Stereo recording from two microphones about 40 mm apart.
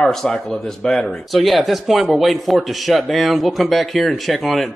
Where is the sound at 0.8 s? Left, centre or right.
Centre.